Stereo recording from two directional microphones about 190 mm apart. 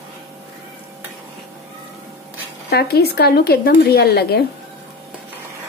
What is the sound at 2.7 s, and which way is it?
Speech, 55° left (ahead or behind).